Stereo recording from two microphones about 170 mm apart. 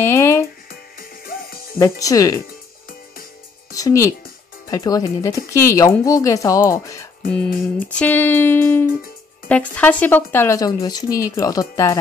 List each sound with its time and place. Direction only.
0.0 s speech: 15° left (ahead or behind)
0.7 s music: 60° left (ahead or behind)
1.8 s speech: 20° left (ahead or behind)
3.7 s speech: 20° left (ahead or behind)